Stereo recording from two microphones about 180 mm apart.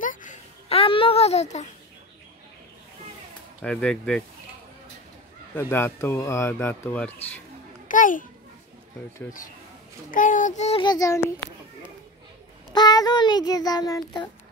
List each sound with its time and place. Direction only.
0.0 s a sound: 45° left (ahead or behind)
3.6 s speech: 5° left (ahead or behind)
5.5 s speech: 10° left (ahead or behind)
7.9 s a child's voice: 45° left (ahead or behind)
10.1 s a child's voice: 45° left (ahead or behind)
10.8 s speech: 20° left (ahead or behind)
12.7 s child singing: 20° left (ahead or behind)